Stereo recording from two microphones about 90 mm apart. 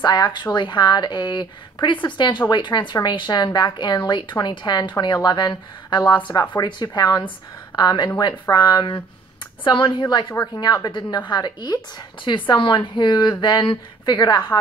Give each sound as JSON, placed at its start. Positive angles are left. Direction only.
{"t": 0.0, "sound": "a woman's voice", "side_deg": 55}
{"t": 10.3, "sound": "speech", "side_deg": 30}
{"t": 10.6, "sound": "a woman's voice", "side_deg": 50}